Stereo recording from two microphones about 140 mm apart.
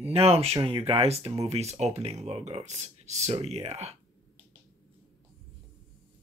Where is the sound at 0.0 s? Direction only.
45° right (ahead or behind).